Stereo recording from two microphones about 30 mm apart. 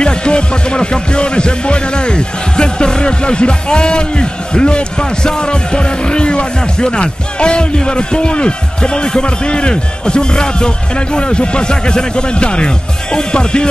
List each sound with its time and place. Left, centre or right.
0.0 s music: left